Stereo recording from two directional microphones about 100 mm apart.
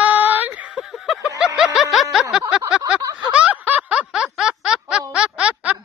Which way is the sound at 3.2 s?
15° right (ahead or behind).